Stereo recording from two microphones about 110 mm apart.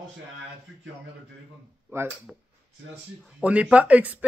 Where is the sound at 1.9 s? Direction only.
25° right (ahead or behind).